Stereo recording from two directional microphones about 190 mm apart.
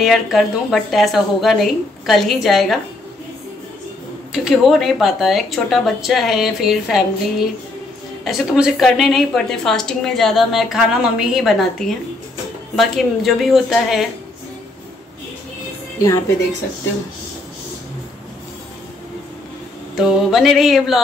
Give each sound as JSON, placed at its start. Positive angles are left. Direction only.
{"t": 0.0, "sound": "a woman's voice", "side_deg": 0}
{"t": 4.3, "sound": "a woman's voice", "side_deg": 0}
{"t": 16.0, "sound": "a woman's voice", "side_deg": 15}
{"t": 20.0, "sound": "a woman's voice", "side_deg": 0}